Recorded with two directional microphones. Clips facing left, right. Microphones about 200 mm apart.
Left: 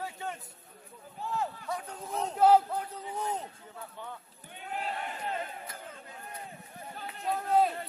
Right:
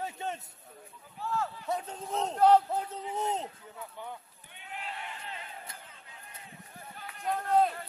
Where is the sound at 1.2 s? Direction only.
15° left (ahead or behind).